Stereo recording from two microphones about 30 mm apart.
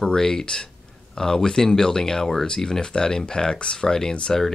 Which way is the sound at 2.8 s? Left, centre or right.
Left.